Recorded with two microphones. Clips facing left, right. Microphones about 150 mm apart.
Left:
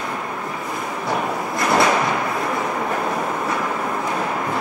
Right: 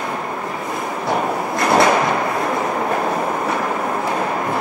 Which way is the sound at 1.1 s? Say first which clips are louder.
Right 3 dB; 25° right (ahead or behind).